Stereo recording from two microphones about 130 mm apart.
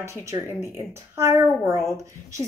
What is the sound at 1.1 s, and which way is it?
Speech, 20° right (ahead or behind).